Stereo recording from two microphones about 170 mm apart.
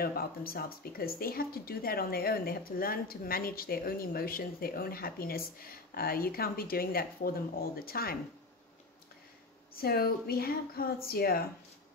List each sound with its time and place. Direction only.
0.0 s speech: 60° left (ahead or behind)
9.8 s speech: 65° left (ahead or behind)